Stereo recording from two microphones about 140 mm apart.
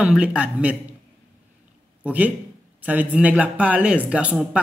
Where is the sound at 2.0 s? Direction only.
10° right (ahead or behind).